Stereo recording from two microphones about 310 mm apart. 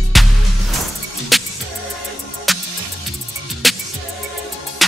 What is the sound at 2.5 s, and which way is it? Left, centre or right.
Music, centre.